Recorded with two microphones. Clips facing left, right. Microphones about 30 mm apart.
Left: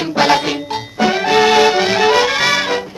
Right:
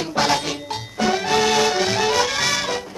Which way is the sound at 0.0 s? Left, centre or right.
Left.